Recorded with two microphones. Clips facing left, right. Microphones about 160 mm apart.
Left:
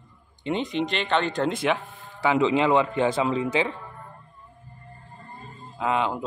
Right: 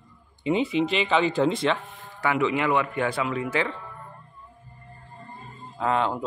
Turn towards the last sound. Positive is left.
turn(degrees=15)  # may be behind; listen again after turning